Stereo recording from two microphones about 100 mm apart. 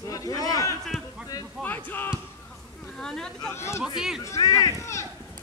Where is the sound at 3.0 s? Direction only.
5° left (ahead or behind).